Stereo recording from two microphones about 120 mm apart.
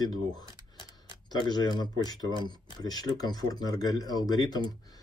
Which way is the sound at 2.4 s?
35° left (ahead or behind).